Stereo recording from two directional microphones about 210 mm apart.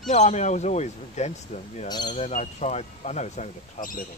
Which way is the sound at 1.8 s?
20° left (ahead or behind).